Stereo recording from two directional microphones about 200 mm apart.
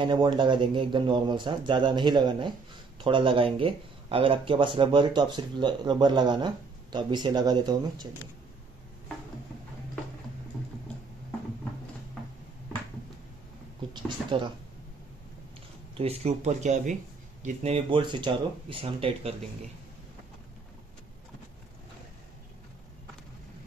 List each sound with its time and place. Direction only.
0.0 s speech: 20° right (ahead or behind)
13.9 s speech: 25° right (ahead or behind)
16.0 s speech: 30° right (ahead or behind)